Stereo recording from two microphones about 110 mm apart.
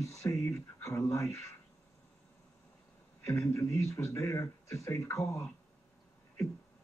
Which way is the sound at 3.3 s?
30° left (ahead or behind).